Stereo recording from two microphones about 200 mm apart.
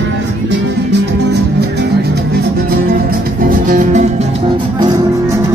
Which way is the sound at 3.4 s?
40° right (ahead or behind).